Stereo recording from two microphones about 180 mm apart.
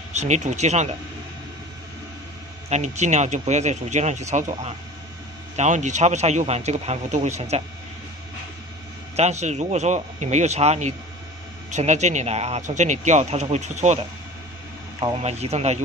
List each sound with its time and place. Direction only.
0.1 s speech: 40° right (ahead or behind)
2.7 s speech: 40° right (ahead or behind)
9.1 s speech: 40° right (ahead or behind)
15.0 s speech: 30° right (ahead or behind)